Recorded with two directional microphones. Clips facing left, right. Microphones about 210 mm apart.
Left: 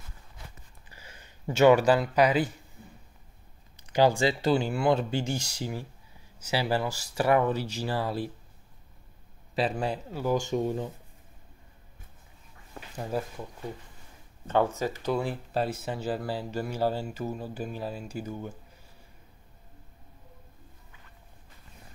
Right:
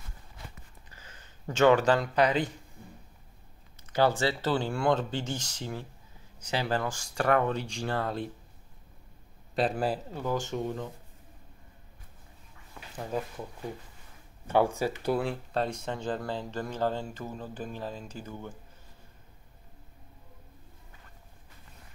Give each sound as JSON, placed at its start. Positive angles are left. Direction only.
{"t": 0.9, "sound": "speech", "side_deg": 10}
{"t": 3.8, "sound": "speech", "side_deg": 15}
{"t": 9.6, "sound": "a man's voice", "side_deg": 0}
{"t": 10.2, "sound": "speech", "side_deg": 15}
{"t": 14.5, "sound": "speech", "side_deg": -10}
{"t": 15.0, "sound": "speech", "side_deg": 0}